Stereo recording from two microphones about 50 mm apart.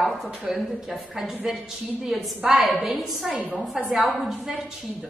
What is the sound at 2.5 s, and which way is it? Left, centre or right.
A woman's voice, centre.